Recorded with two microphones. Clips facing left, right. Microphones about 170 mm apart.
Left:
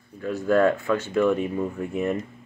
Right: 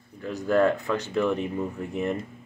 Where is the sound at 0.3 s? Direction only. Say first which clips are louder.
Left 2 dB; 15° right (ahead or behind).